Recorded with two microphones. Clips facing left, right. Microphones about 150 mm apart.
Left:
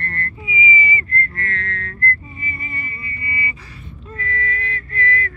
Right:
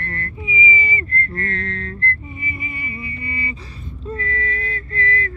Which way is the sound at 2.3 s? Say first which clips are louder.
Right 1 dB; 15° right (ahead or behind).